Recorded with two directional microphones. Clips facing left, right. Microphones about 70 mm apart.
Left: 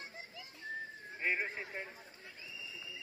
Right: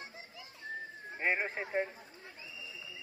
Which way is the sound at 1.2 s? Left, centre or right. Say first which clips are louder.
Right 3 dB; right.